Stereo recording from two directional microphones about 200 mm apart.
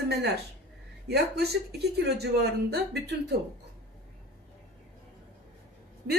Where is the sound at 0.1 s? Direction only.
55° right (ahead or behind).